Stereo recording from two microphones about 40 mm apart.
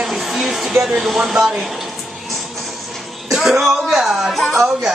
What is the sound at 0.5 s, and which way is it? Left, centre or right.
Speech, centre.